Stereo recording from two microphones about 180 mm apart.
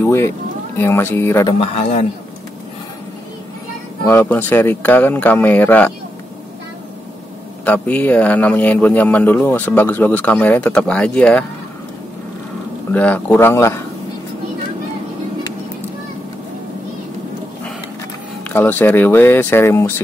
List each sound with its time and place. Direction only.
0.0 s speech: 15° left (ahead or behind)
1.6 s a man's voice: 40° left (ahead or behind)
4.0 s speech: 10° left (ahead or behind)
7.6 s speech: 10° left (ahead or behind)
12.9 s speech: 10° left (ahead or behind)
18.5 s speech: 10° left (ahead or behind)